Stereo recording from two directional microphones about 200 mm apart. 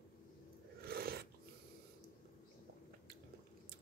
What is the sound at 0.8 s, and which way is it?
Biting, 50° right (ahead or behind).